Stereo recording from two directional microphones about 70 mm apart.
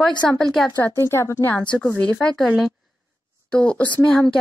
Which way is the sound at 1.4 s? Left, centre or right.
Left.